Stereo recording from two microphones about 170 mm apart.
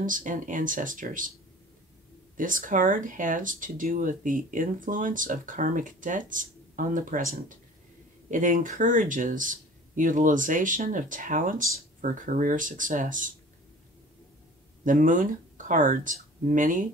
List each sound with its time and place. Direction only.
0.0 s speech: 50° right (ahead or behind)
2.3 s speech: 50° right (ahead or behind)
14.9 s speech: 50° right (ahead or behind)